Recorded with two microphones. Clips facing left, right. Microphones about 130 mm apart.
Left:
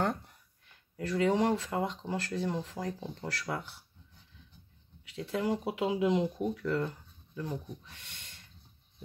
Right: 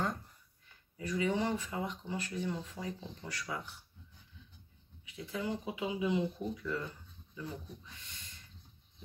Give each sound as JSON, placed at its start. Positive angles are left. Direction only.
{"t": 0.9, "sound": "speech", "side_deg": 85}
{"t": 5.0, "sound": "speech", "side_deg": 80}